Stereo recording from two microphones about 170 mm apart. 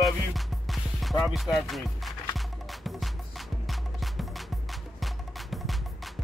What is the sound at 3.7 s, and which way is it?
Music, centre (ahead or behind).